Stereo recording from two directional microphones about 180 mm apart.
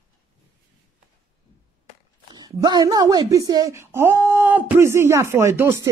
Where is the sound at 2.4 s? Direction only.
20° right (ahead or behind).